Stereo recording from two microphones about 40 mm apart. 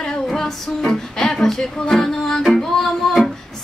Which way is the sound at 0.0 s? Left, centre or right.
Centre.